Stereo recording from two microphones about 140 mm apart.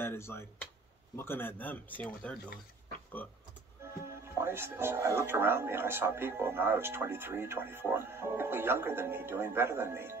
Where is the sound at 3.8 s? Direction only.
20° right (ahead or behind).